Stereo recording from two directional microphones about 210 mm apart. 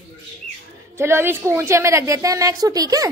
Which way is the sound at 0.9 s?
10° right (ahead or behind).